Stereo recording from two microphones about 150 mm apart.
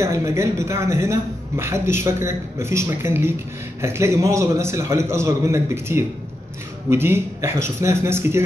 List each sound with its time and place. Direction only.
0.0 s a woman's voice: 20° right (ahead or behind)